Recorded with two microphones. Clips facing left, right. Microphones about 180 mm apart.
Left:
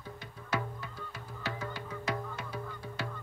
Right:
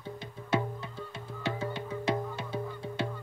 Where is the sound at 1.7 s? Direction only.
25° right (ahead or behind).